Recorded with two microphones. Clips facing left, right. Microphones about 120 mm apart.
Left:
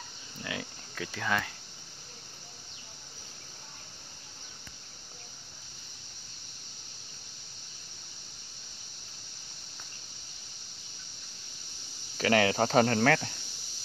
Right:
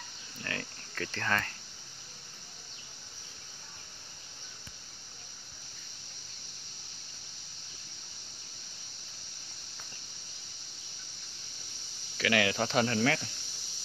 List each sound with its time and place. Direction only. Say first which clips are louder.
0.4 s cricket: left 2 dB; 10° left (ahead or behind)
12.2 s speech: left 4 dB; 35° left (ahead or behind)